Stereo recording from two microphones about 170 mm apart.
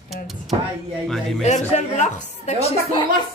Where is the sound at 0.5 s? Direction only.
35° right (ahead or behind).